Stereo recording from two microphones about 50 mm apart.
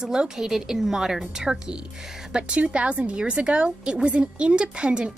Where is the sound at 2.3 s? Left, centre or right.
Right.